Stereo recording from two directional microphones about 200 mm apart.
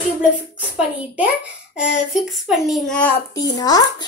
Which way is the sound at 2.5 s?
Centre (ahead or behind).